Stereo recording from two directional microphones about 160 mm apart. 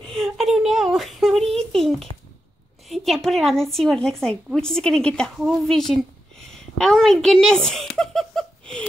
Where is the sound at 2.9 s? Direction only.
Centre (ahead or behind).